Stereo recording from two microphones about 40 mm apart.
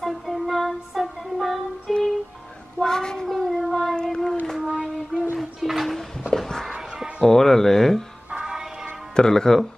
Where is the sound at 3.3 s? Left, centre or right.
Centre.